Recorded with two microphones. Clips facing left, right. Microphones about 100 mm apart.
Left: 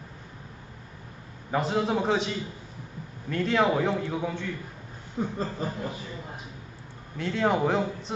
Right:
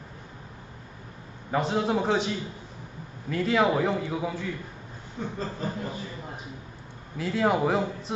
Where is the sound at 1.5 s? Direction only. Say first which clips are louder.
Even; centre (ahead or behind).